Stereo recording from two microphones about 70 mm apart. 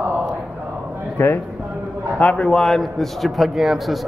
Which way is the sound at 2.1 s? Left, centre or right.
Left.